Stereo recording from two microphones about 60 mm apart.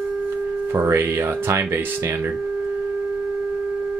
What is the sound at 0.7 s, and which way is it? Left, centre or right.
Speech, right.